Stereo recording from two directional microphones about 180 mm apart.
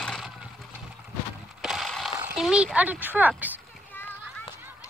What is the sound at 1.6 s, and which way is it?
Mechanisms, centre (ahead or behind).